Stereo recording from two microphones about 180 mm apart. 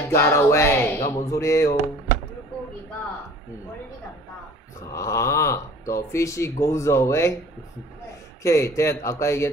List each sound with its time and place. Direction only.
0.1 s speech: 15° left (ahead or behind)
4.9 s speech: 15° left (ahead or behind)
8.4 s speech: 15° left (ahead or behind)